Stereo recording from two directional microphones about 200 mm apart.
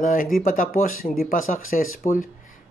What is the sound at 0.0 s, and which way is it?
A man's voice, 45° left (ahead or behind).